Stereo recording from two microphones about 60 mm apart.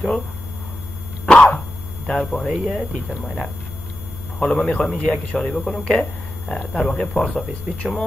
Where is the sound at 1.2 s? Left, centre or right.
Centre.